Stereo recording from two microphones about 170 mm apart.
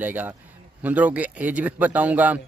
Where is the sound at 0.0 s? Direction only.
10° right (ahead or behind).